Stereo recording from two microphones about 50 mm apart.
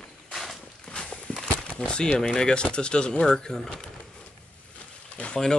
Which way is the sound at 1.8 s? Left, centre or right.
Centre.